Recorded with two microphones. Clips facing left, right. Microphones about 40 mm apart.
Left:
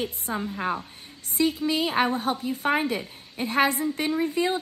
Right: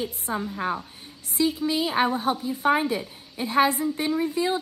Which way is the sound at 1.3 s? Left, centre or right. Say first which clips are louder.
Even; left.